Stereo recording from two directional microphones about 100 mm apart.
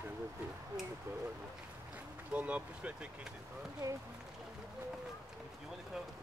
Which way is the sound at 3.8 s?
40° right (ahead or behind).